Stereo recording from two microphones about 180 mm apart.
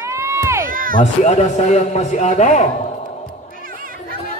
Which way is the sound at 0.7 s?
50° right (ahead or behind).